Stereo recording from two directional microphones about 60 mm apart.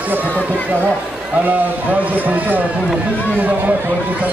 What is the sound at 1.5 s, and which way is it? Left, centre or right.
A man's voice, right.